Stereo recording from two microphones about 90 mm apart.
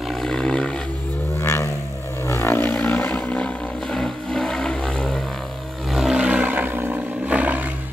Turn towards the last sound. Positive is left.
turn(degrees=-15)  # may be behind; listen again after turning